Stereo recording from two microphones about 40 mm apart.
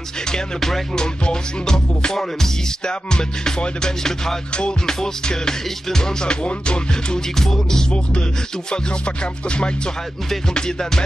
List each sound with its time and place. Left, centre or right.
0.3 s music: centre
0.9 s music: centre
6.4 s music: left
7.3 s music: centre
8.6 s music: left